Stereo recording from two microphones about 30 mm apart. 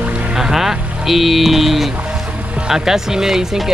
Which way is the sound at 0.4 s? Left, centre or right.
Centre.